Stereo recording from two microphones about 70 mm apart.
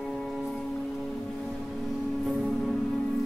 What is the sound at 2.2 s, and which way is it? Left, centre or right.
Music, centre.